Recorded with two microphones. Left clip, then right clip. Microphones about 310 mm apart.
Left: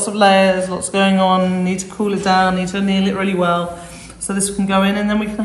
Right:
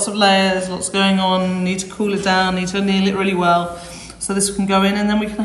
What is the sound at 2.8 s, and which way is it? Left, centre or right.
Speech, left.